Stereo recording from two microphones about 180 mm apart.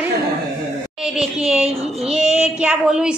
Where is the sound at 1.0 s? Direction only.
5° right (ahead or behind).